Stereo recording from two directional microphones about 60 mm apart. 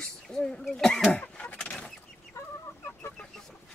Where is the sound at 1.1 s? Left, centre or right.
Left.